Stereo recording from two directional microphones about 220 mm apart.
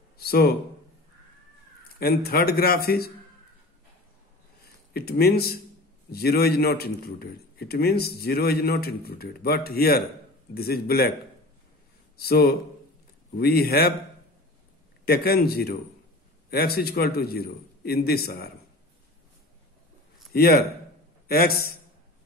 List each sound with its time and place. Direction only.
0.2 s speech: 45° left (ahead or behind)
2.0 s a man's voice: 45° left (ahead or behind)
4.9 s a man's voice: 45° left (ahead or behind)
12.2 s a man's voice: 45° left (ahead or behind)
15.0 s a man's voice: 45° left (ahead or behind)
20.3 s a man's voice: 45° left (ahead or behind)